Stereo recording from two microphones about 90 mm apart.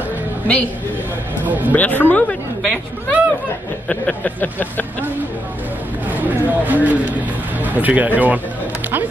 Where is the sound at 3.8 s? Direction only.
15° left (ahead or behind).